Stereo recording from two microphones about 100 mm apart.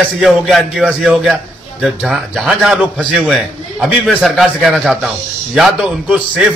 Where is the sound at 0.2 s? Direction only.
Centre (ahead or behind).